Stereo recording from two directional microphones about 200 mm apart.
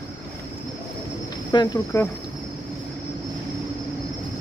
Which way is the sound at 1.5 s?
20° left (ahead or behind).